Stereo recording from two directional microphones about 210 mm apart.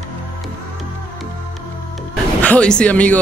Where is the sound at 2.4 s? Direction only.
5° left (ahead or behind).